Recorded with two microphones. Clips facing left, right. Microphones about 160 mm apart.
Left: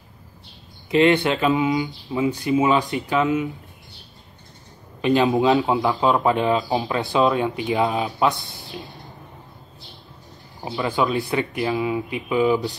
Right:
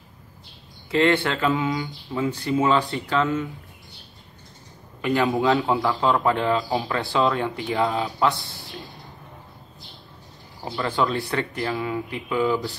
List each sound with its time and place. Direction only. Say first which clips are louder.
0.8 s speech: left 3 dB; 15° left (ahead or behind)
5.0 s speech: left 3 dB; 20° left (ahead or behind)
10.6 s speech: left 2 dB; 15° left (ahead or behind)